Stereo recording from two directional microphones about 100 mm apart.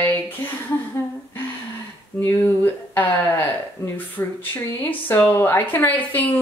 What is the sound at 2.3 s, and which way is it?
Speech, 25° left (ahead or behind).